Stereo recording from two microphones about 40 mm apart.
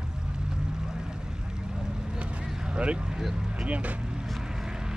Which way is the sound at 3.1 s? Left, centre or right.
Centre.